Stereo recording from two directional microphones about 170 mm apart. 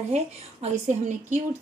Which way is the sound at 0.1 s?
40° right (ahead or behind).